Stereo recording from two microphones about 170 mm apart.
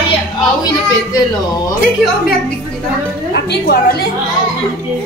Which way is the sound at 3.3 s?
75° left (ahead or behind).